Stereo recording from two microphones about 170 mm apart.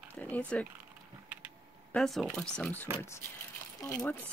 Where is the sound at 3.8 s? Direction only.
15° left (ahead or behind).